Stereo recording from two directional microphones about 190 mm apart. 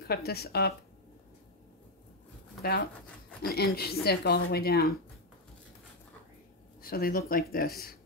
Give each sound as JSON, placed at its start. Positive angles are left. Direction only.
{"t": 0.0, "sound": "speech", "side_deg": 55}
{"t": 2.6, "sound": "speech", "side_deg": 55}
{"t": 6.8, "sound": "speech", "side_deg": 50}